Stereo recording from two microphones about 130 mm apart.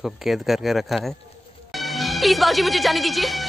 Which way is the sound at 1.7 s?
Centre (ahead or behind).